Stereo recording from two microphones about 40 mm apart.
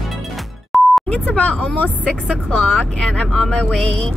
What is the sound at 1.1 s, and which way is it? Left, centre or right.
A woman's voice, left.